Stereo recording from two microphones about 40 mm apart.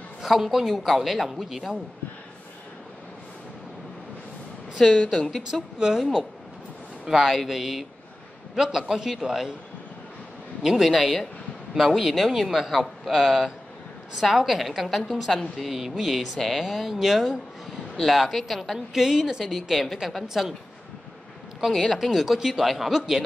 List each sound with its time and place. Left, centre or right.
0.2 s a woman's voice: centre
4.8 s a woman's voice: centre
5.5 s a man's voice: centre
7.1 s a man's voice: centre
10.6 s a woman's voice: centre
12.8 s a woman's voice: centre
21.9 s a woman's voice: centre